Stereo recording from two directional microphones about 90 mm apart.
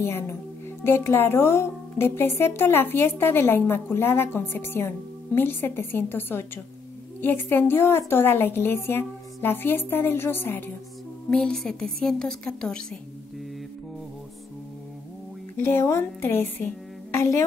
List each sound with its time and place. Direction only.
0.0 s speech: 30° left (ahead or behind)
11.2 s a woman's voice: 5° left (ahead or behind)
15.5 s a woman's voice: 25° left (ahead or behind)